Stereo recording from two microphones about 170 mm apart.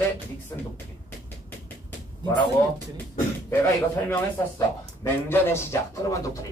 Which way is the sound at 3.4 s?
10° left (ahead or behind).